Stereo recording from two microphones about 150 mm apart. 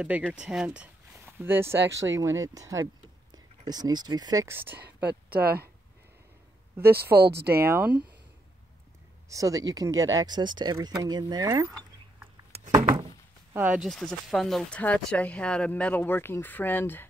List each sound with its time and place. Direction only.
0.3 s speech: 5° right (ahead or behind)
5.3 s speech: 90° right
7.0 s speech: 90° right
7.5 s speech: 15° right (ahead or behind)
9.3 s speech: 20° right (ahead or behind)
13.5 s speech: 10° right (ahead or behind); by 17.1 s 15° left (ahead or behind)